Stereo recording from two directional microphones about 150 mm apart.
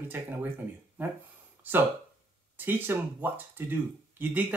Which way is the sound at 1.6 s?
15° right (ahead or behind).